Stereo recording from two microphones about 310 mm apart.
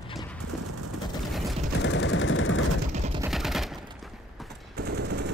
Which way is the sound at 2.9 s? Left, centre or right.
Right.